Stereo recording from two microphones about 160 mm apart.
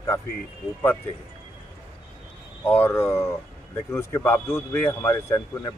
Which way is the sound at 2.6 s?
10° left (ahead or behind).